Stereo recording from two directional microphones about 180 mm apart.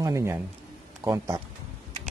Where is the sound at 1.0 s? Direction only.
15° right (ahead or behind).